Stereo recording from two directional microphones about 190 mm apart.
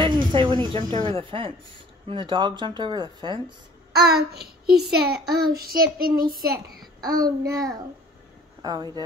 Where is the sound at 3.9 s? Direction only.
55° right (ahead or behind).